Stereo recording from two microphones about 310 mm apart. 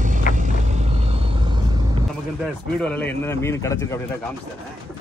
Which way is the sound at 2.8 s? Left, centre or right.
Centre.